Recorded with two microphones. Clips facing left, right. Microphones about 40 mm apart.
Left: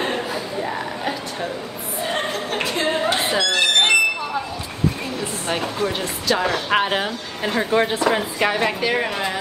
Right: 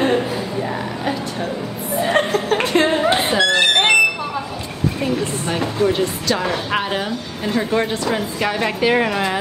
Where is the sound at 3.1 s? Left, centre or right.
Centre.